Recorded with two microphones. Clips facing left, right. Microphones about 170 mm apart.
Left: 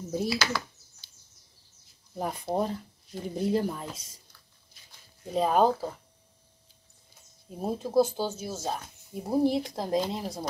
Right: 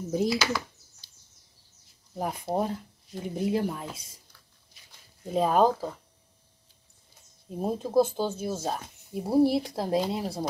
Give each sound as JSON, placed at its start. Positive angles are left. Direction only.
{"t": 0.1, "sound": "speech", "side_deg": -15}
{"t": 2.1, "sound": "speech", "side_deg": -10}
{"t": 5.3, "sound": "speech", "side_deg": 0}
{"t": 7.4, "sound": "speech", "side_deg": 0}